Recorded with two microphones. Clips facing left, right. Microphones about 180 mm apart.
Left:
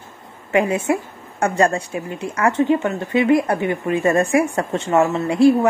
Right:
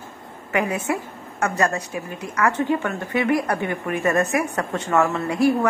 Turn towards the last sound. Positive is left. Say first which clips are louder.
# left 5 dB
turn(degrees=25)  # may be behind; listen again after turning